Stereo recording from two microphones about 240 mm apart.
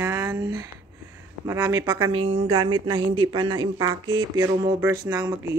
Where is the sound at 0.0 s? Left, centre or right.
Centre.